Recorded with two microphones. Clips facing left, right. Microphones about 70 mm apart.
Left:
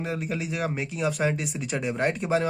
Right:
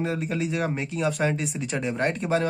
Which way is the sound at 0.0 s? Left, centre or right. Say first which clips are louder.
Right 3 dB; centre.